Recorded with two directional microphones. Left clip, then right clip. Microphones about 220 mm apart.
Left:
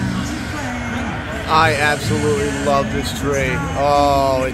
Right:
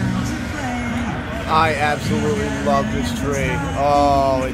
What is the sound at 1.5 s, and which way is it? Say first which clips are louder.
Speech: left 2 dB; 25° left (ahead or behind).